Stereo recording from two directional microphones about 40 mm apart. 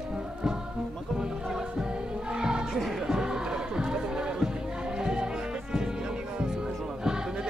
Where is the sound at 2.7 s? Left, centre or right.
Centre.